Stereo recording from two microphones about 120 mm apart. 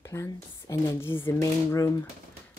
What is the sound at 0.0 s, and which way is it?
Speech, 25° left (ahead or behind).